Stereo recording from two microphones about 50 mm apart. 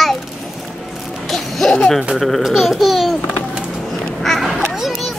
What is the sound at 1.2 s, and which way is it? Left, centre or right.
Speech, centre.